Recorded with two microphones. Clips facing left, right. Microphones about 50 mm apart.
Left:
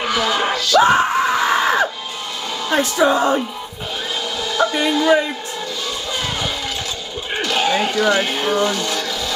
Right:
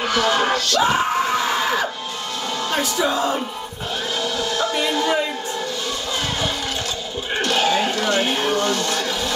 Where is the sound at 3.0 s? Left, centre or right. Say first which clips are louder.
Left 7 dB; left.